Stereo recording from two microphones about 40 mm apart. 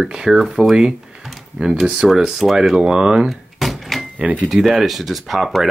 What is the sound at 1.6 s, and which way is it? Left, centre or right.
Speech, right.